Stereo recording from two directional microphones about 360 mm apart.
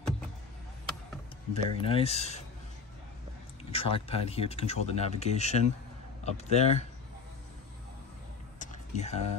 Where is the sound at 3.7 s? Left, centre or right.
Centre.